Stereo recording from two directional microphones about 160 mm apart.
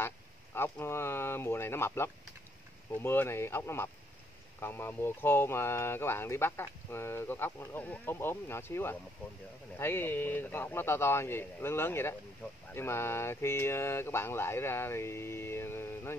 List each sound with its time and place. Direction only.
0.6 s speech: 15° left (ahead or behind)